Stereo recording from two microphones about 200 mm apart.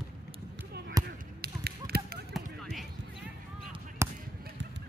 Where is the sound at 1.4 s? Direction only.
50° right (ahead or behind).